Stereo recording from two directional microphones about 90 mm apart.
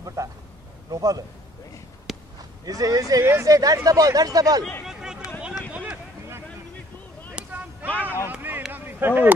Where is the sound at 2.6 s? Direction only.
45° right (ahead or behind).